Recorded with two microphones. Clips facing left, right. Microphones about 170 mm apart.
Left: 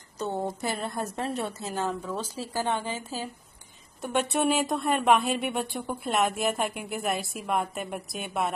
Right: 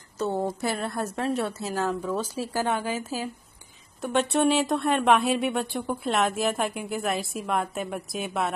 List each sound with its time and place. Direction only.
0.2 s a woman's voice: centre (ahead or behind)
2.3 s speech: 15° right (ahead or behind)
4.0 s a woman's voice: 5° left (ahead or behind)